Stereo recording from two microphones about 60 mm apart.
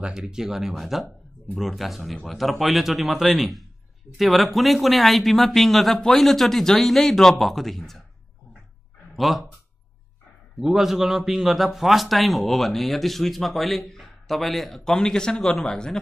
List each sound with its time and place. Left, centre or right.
0.0 s a man's voice: centre
9.1 s speech: centre
10.6 s a man's voice: centre